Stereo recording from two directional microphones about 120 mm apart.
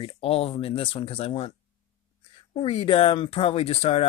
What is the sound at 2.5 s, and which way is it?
Speech, 55° left (ahead or behind).